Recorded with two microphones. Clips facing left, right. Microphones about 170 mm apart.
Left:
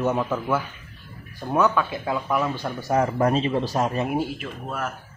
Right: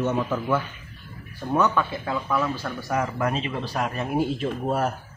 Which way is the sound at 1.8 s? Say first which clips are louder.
Left 2 dB; 15° left (ahead or behind).